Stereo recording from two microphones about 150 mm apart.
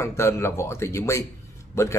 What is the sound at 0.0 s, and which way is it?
A man's voice, 20° left (ahead or behind).